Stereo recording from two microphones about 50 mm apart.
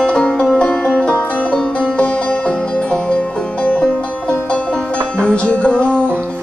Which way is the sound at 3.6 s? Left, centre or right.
Left.